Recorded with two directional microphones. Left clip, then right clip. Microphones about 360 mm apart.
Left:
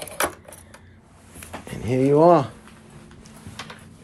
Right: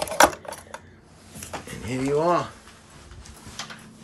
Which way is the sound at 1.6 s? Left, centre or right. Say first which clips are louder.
Left 8 dB; centre.